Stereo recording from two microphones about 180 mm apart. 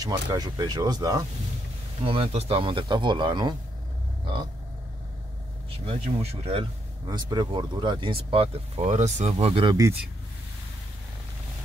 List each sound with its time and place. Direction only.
0.0 s speech: 25° right (ahead or behind)
2.0 s speech: 30° right (ahead or behind)
5.9 s speech: 35° right (ahead or behind)